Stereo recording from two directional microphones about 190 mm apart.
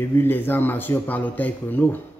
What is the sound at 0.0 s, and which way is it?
Speech, 10° left (ahead or behind).